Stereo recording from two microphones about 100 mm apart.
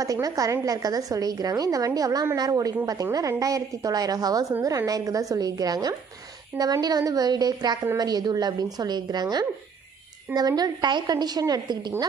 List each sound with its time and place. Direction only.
0.0 s a woman's voice: 35° right (ahead or behind)